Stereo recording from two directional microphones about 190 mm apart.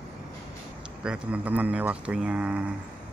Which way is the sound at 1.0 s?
5° right (ahead or behind).